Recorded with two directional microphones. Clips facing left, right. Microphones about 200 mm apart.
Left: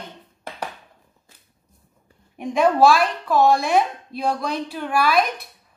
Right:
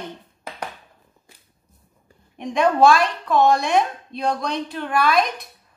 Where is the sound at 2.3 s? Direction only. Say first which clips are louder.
Left 1 dB; 5° left (ahead or behind).